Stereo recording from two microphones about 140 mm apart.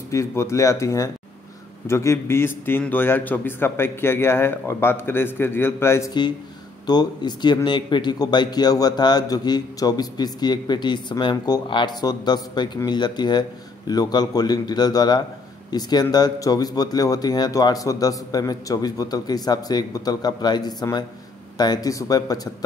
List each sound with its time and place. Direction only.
0.1 s a man's voice: 20° left (ahead or behind)
6.9 s a man's voice: 30° left (ahead or behind)